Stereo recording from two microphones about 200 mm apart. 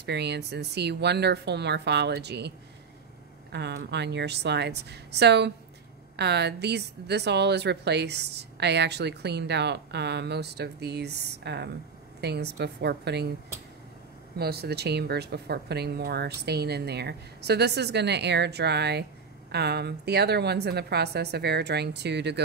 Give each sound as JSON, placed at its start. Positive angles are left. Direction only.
{"t": 0.0, "sound": "a woman's voice", "side_deg": -55}
{"t": 3.5, "sound": "a woman's voice", "side_deg": -60}
{"t": 14.4, "sound": "a woman's voice", "side_deg": -50}